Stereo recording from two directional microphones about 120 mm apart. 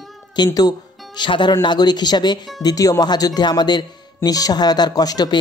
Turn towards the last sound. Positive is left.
turn(degrees=35)  # may be behind; listen again after turning